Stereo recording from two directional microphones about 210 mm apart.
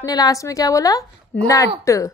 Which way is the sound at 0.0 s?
15° left (ahead or behind).